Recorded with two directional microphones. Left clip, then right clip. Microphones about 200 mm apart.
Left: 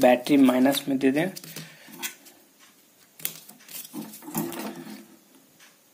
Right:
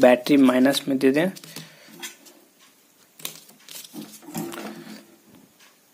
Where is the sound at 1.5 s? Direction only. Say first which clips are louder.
Right 1 dB; 15° right (ahead or behind).